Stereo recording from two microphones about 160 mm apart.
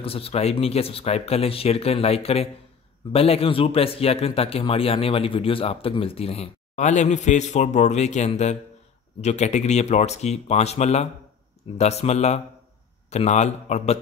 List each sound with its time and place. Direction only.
0.0 s a man's voice: 35° left (ahead or behind)